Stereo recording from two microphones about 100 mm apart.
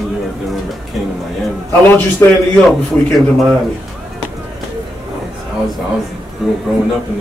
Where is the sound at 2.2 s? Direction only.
30° left (ahead or behind).